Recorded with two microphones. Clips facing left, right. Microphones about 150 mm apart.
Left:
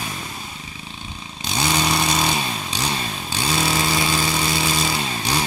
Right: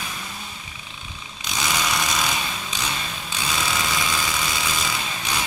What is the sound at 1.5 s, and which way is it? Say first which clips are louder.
Vehicle: left 4 dB; 35° left (ahead or behind).